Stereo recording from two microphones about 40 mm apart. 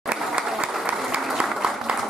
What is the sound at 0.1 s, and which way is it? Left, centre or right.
Applause, right.